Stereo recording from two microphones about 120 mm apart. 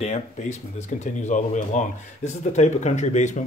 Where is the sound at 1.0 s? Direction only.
80° left.